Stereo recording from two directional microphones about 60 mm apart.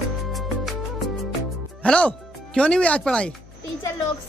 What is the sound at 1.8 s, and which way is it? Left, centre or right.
Speech, left.